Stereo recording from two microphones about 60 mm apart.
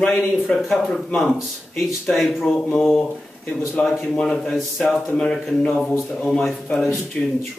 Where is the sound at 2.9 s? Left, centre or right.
Centre.